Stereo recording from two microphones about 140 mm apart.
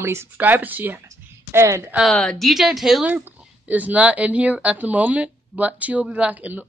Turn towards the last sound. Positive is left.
turn(degrees=-10)  # may be behind; listen again after turning